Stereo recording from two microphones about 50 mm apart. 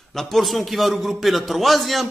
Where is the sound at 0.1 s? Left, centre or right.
Centre.